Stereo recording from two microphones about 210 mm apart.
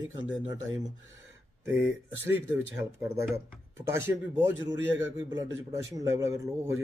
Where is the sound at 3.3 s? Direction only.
15° right (ahead or behind).